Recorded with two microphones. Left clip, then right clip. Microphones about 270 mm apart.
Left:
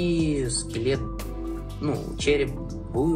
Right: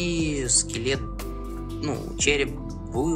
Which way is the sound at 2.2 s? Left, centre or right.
Centre.